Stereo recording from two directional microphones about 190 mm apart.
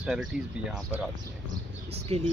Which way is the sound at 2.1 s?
30° right (ahead or behind).